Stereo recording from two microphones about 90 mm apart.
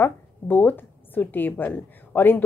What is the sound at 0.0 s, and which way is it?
Speech, 20° left (ahead or behind).